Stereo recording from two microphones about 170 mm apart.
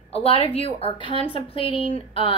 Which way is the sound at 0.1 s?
35° left (ahead or behind).